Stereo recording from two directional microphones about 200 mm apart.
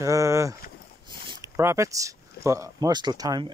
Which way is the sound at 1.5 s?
15° right (ahead or behind).